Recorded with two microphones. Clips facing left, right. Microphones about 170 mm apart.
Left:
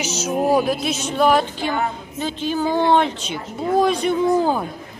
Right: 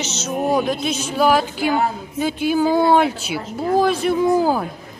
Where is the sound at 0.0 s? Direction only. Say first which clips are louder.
Left 2 dB; 10° left (ahead or behind).